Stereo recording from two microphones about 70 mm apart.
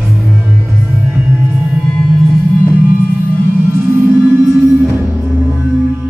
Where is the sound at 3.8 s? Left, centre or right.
Right.